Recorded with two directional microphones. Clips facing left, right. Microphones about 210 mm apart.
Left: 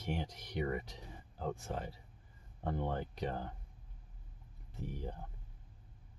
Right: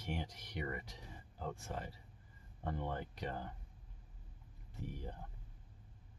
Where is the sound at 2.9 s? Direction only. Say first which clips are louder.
Left 4 dB; 25° left (ahead or behind).